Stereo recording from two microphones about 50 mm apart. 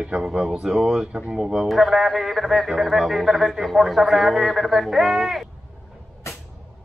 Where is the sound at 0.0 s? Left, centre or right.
Right.